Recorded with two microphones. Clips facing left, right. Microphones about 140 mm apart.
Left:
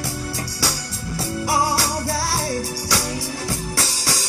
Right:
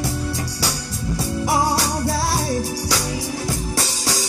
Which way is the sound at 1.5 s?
25° right (ahead or behind).